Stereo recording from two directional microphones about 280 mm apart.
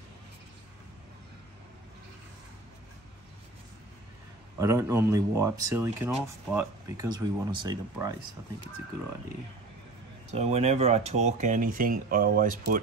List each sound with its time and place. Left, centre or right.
4.6 s speech: centre
10.3 s speech: right